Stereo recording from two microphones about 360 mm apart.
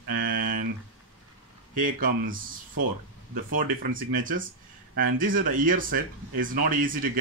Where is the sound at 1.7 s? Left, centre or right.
Right.